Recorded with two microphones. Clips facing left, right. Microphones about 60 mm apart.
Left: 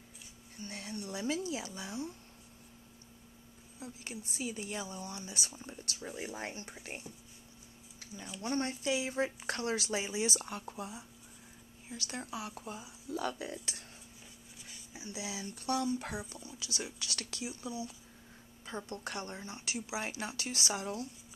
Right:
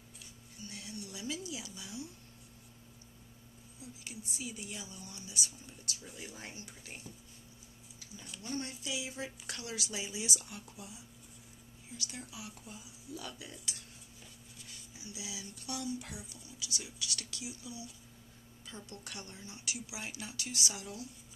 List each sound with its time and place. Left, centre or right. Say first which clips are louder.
0.6 s speech: left 4 dB; left
3.8 s speech: left 4 dB; left
5.5 s speech: left 3 dB; left
8.4 s speech: left 6 dB; left
12.1 s speech: left 7 dB; left
15.0 s speech: left 5 dB; left
18.9 s speech: left 8 dB; left